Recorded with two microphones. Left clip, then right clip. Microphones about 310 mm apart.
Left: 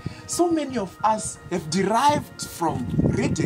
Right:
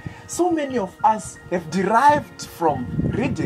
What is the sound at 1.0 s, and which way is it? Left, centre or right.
Speech, left.